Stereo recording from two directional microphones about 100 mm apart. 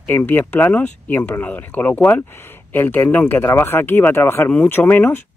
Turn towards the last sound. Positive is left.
turn(degrees=20)  # may be behind; listen again after turning